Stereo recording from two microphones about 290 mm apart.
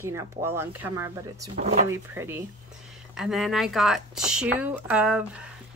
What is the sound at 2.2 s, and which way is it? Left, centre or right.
Speech, centre.